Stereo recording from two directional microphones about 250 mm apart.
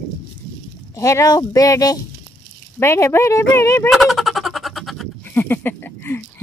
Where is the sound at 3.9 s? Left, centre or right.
Centre.